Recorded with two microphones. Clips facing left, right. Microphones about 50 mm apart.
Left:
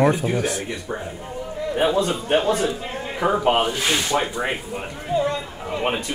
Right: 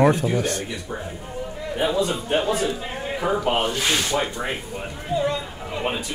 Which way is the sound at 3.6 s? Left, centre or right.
Centre.